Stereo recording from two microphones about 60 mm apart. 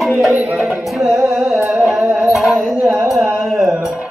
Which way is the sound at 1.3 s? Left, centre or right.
Centre.